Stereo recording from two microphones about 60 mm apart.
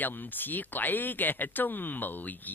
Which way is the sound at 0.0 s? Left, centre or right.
Left.